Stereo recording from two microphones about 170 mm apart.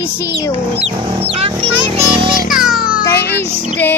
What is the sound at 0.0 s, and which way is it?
Speech, 15° left (ahead or behind).